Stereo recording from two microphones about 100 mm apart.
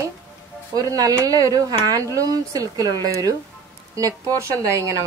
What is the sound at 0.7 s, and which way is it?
Speech, 40° right (ahead or behind).